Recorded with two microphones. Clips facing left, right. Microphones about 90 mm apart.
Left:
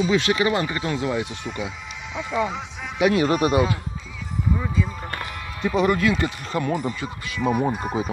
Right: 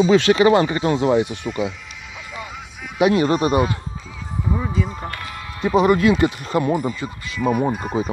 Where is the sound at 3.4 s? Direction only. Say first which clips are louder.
Right 1 dB; 45° right (ahead or behind).